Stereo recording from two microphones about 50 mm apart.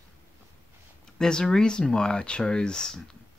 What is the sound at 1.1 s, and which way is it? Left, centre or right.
Speech, centre.